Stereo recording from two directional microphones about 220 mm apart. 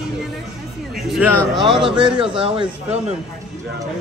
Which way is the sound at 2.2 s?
25° right (ahead or behind).